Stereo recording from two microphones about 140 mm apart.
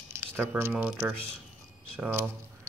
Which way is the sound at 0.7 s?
5° right (ahead or behind).